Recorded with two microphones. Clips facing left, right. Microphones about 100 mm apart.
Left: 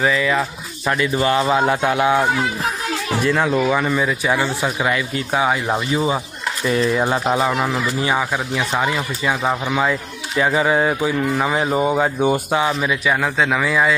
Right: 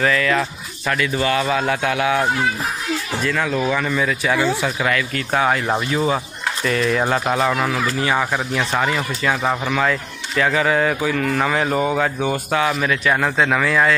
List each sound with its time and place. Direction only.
0.0 s speech: 15° left (ahead or behind)
3.3 s speech: 25° left (ahead or behind)
8.2 s speech: 5° left (ahead or behind)
13.1 s speech: centre (ahead or behind)